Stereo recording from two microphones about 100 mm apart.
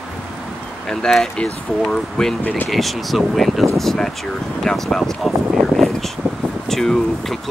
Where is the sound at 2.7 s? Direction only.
Centre (ahead or behind).